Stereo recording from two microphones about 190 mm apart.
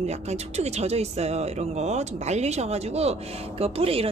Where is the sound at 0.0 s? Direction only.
35° right (ahead or behind).